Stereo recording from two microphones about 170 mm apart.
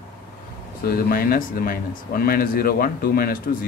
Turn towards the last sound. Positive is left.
turn(degrees=60)  # may be behind; listen again after turning